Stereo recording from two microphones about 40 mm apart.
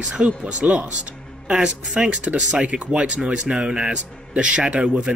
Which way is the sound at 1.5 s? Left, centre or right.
Right.